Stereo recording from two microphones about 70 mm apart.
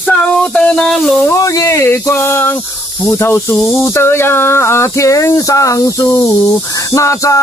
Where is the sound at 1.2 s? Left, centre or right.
Left.